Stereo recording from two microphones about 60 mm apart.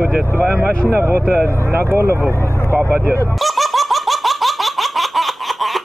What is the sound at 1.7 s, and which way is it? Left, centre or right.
Speech, right.